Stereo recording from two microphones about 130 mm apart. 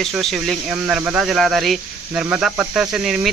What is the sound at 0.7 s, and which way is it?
Speech, 10° right (ahead or behind).